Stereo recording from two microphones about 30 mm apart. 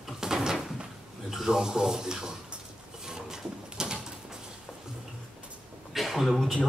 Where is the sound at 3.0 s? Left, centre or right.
Right.